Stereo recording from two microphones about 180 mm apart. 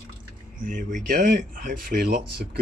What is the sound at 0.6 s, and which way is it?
Speech, 50° right (ahead or behind).